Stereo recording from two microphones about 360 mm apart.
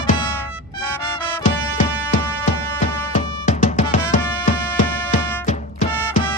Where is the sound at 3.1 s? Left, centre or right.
Centre.